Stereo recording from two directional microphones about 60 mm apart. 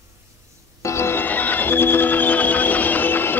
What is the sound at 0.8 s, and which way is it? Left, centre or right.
Music, left.